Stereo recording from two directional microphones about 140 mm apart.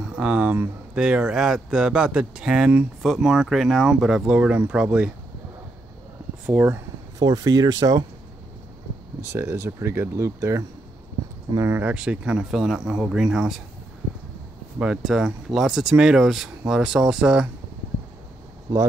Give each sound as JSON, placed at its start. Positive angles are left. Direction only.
{"t": 0.0, "sound": "speech", "side_deg": -5}
{"t": 6.4, "sound": "speech", "side_deg": -15}
{"t": 7.2, "sound": "speech", "side_deg": -30}
{"t": 9.2, "sound": "speech", "side_deg": -20}
{"t": 14.8, "sound": "speech", "side_deg": -5}